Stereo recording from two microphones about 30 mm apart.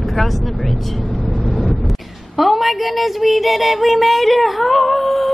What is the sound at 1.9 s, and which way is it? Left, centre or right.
A woman's voice, centre.